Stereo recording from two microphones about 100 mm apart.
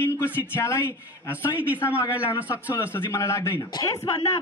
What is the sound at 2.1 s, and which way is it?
Speech, 15° right (ahead or behind).